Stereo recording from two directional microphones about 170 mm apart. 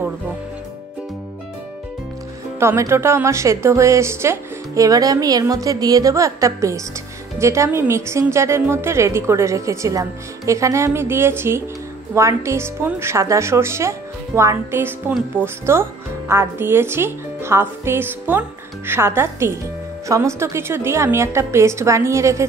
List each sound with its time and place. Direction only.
2.6 s a woman's voice: 15° right (ahead or behind)